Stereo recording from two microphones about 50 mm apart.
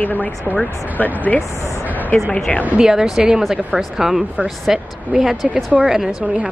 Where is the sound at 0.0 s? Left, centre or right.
Left.